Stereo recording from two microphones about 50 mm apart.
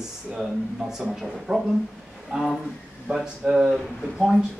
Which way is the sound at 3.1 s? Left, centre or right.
Right.